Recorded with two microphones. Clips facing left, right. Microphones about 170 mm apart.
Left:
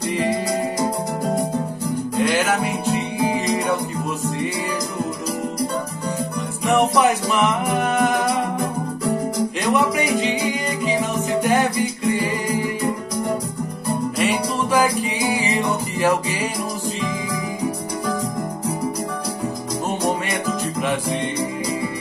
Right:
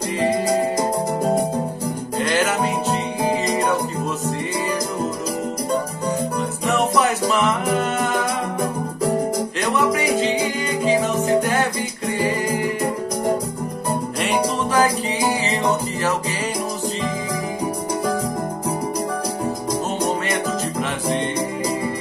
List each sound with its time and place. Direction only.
2.9 s music: 50° right (ahead or behind)
14.2 s music: 10° left (ahead or behind)